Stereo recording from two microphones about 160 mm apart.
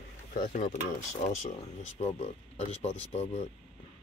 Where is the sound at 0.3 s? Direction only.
50° left (ahead or behind).